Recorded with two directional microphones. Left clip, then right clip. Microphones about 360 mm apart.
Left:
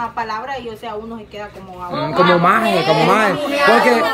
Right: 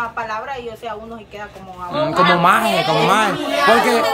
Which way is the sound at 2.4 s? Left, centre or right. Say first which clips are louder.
Even; centre.